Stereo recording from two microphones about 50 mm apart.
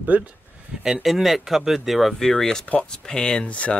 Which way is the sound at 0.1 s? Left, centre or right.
Right.